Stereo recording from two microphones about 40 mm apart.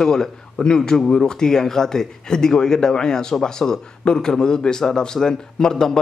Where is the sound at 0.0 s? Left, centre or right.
Centre.